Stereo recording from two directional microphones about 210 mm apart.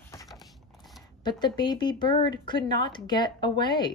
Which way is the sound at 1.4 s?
20° left (ahead or behind).